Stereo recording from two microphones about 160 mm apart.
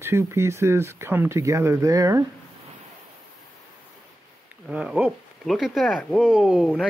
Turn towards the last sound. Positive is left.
turn(degrees=-5)  # may be behind; listen again after turning